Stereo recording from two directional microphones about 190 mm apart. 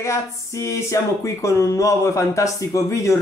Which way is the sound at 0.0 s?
15° left (ahead or behind).